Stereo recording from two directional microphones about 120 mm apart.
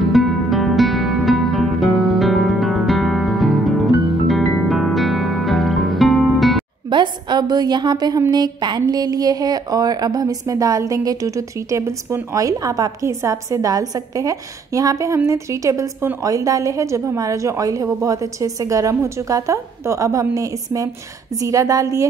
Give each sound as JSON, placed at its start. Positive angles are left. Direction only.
{"t": 0.0, "sound": "music", "side_deg": 0}
{"t": 6.9, "sound": "a sound", "side_deg": -40}
{"t": 8.3, "sound": "speech", "side_deg": -35}